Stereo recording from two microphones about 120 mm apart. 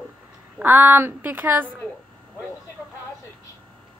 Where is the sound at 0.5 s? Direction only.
15° right (ahead or behind).